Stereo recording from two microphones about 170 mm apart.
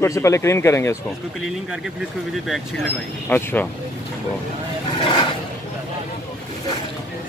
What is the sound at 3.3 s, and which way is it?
Speech, 10° left (ahead or behind).